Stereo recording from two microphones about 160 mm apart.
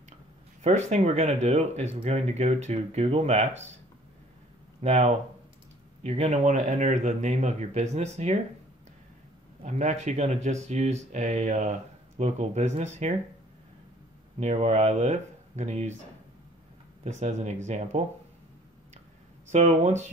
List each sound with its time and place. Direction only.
0.6 s speech: 45° right (ahead or behind)
4.8 s speech: 45° right (ahead or behind)
9.6 s speech: 50° right (ahead or behind)
14.4 s speech: 45° right (ahead or behind)
17.0 s speech: 45° right (ahead or behind)
19.5 s speech: 45° right (ahead or behind)